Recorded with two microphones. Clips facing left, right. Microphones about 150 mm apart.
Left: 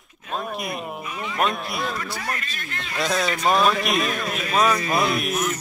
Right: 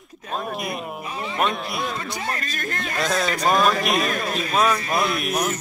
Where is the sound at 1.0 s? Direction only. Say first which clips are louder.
Right 1 dB; 30° right (ahead or behind).